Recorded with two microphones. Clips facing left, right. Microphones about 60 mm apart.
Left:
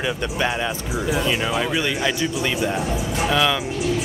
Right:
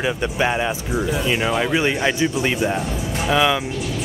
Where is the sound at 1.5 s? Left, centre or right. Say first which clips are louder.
Right 3 dB; centre.